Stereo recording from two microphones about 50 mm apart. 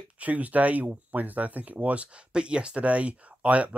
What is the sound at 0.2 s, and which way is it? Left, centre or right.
Speech, right.